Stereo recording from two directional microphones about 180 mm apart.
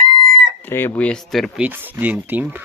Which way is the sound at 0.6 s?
10° left (ahead or behind).